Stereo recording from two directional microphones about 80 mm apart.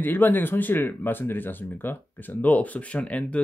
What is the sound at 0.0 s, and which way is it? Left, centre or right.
Speech, left.